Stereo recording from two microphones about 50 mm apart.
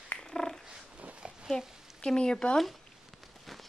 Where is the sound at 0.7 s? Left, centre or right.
Right.